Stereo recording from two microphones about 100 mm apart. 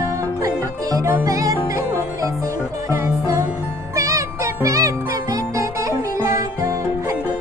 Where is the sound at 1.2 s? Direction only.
35° right (ahead or behind).